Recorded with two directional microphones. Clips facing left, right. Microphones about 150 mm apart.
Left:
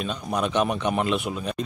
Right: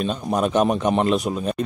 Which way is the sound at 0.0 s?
45° right (ahead or behind).